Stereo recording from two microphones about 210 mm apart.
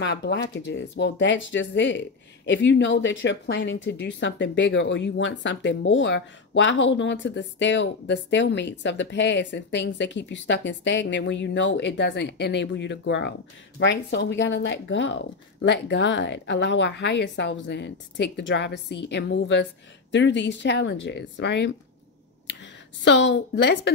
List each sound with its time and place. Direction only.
0.0 s speech: 55° left (ahead or behind)
23.0 s speech: 60° left (ahead or behind)